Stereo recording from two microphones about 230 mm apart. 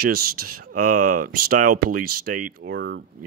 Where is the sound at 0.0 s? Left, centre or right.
Right.